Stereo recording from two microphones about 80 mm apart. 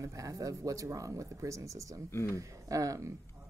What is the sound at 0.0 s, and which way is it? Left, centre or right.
Speech, right.